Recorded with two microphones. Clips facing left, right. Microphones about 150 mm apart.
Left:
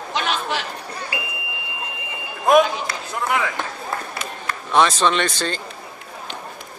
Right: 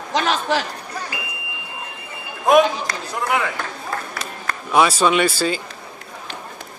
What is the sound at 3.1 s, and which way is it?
Speech, centre (ahead or behind).